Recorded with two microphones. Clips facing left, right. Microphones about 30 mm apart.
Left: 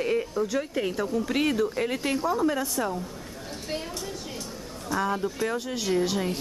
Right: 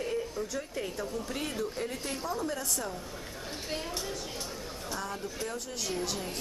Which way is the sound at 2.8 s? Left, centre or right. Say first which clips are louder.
Left 9 dB; left.